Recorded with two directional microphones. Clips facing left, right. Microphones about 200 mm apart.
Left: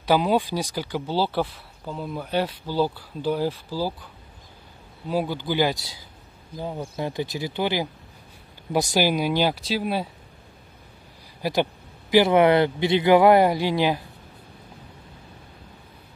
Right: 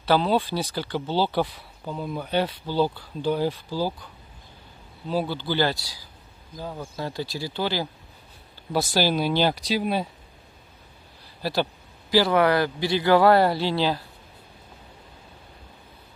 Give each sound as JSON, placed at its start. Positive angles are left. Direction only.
{"t": 0.0, "sound": "a man's voice", "side_deg": 15}
{"t": 11.4, "sound": "a man's voice", "side_deg": 15}